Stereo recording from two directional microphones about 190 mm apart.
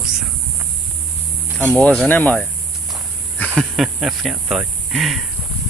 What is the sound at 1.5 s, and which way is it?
Speech, 5° left (ahead or behind).